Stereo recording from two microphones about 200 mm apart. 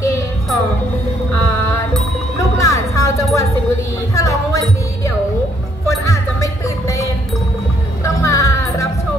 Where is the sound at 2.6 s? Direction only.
15° left (ahead or behind).